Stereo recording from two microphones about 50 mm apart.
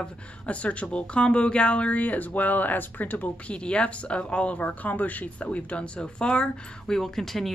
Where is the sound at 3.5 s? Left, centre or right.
Left.